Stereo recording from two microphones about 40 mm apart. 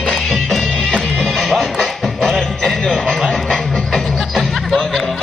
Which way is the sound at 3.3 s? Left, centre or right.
Centre.